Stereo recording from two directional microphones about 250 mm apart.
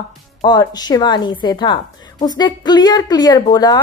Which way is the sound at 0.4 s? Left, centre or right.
Centre.